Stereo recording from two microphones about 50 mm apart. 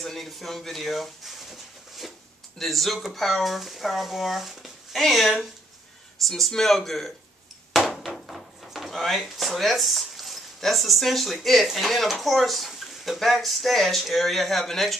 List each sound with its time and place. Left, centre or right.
0.0 s speech: centre
7.7 s drawer open or close: centre
11.7 s speech: centre